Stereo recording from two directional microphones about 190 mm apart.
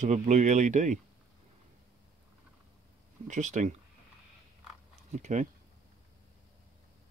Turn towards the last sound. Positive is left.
turn(degrees=-40)  # may be behind; listen again after turning